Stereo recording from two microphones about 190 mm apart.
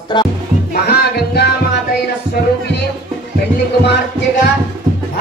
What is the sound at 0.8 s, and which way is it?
Music, 60° left (ahead or behind).